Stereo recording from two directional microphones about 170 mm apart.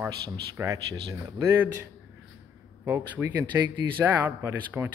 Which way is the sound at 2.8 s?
15° right (ahead or behind).